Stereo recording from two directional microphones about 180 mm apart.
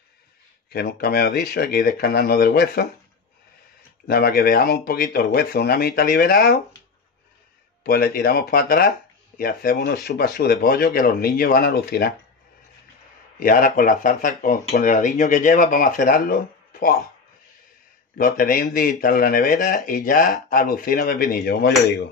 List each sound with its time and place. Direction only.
0.7 s speech: 60° left (ahead or behind)
4.1 s speech: 55° left (ahead or behind)
7.8 s speech: 55° left (ahead or behind)
13.4 s speech: 50° left (ahead or behind)
18.1 s speech: 50° left (ahead or behind)